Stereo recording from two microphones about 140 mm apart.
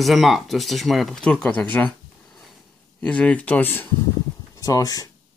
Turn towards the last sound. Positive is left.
turn(degrees=25)  # may be behind; listen again after turning